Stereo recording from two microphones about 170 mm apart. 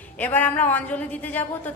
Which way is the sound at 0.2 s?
10° left (ahead or behind).